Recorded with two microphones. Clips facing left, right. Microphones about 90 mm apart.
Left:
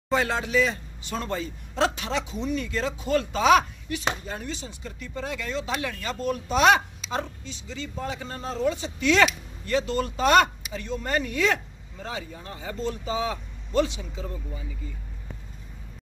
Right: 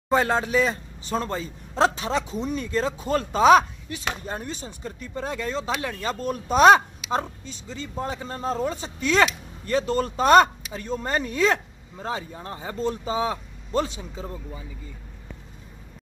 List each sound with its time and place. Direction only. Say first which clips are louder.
0.1 s speech: right 3 dB; 35° right (ahead or behind)